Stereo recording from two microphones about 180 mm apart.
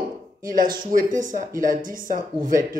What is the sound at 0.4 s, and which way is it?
Speech, 50° right (ahead or behind).